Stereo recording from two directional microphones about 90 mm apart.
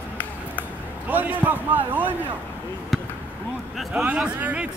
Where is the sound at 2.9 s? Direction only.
5° left (ahead or behind).